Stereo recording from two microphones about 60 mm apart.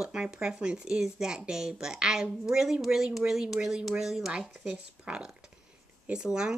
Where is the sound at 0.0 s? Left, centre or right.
Centre.